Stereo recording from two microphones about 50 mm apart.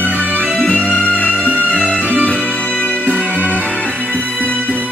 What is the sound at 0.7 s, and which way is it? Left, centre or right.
Music, left.